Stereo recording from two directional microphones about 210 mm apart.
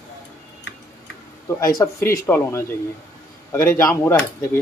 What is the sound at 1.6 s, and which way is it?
A man's voice, 15° left (ahead or behind).